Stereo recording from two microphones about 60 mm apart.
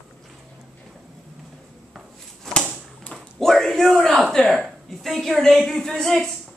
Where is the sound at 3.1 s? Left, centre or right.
Centre.